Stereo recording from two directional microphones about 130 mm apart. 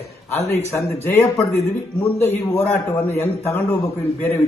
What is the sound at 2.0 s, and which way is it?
A man's voice, 15° left (ahead or behind).